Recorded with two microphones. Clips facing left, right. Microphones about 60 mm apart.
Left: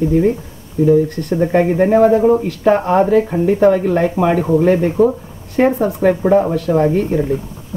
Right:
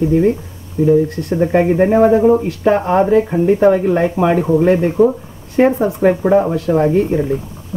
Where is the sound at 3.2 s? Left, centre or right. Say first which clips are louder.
Right 1 dB; centre.